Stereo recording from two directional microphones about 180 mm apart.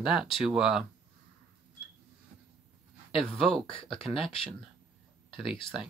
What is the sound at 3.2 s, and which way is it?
Speech, 5° left (ahead or behind).